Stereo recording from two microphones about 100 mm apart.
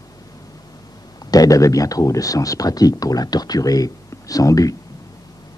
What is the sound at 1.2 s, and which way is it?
Speech, 40° left (ahead or behind).